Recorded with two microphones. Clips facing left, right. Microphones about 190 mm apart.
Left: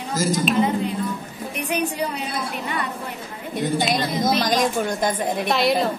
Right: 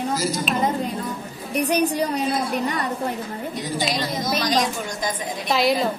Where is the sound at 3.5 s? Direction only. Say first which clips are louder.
Left 5 dB; 55° left (ahead or behind).